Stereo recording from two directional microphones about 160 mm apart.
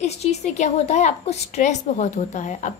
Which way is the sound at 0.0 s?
45° left (ahead or behind).